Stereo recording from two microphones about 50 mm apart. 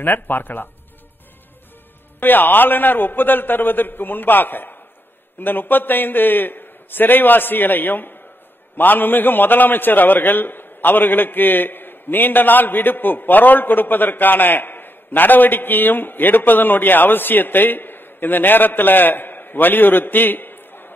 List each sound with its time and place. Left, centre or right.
0.0 s a man's voice: left
2.1 s a man's voice: left